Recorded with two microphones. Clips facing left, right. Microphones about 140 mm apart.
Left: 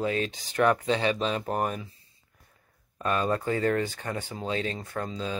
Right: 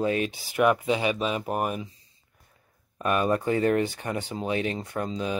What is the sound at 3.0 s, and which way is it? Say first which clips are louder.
Speech: right 3 dB; 15° right (ahead or behind).